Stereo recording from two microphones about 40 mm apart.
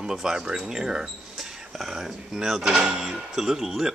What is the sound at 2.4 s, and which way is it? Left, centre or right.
Speech, centre.